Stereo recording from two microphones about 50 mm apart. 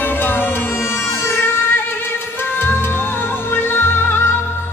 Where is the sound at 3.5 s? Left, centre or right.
Left.